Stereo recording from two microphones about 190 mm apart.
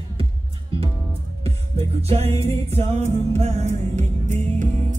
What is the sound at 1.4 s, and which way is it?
Music, 30° right (ahead or behind).